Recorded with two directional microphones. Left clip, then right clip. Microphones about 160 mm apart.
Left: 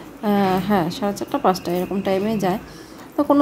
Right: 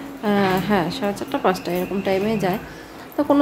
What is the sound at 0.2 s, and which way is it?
Speech, 15° left (ahead or behind).